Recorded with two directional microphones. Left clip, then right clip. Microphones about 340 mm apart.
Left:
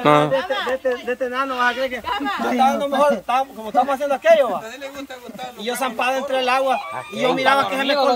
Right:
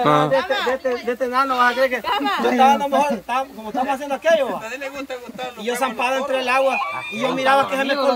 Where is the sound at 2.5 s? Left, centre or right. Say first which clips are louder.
Right 2 dB; centre.